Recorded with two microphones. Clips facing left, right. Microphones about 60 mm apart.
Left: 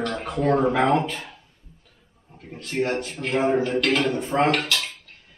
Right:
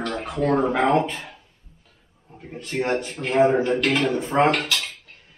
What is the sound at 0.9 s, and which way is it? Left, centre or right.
Speech, centre.